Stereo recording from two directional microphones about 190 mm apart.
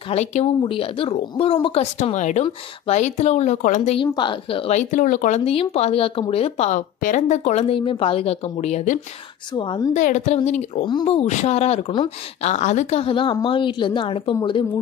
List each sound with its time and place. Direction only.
0.1 s speech: 35° left (ahead or behind)
9.6 s a woman's voice: 25° left (ahead or behind)
9.9 s a woman's voice: 40° left (ahead or behind)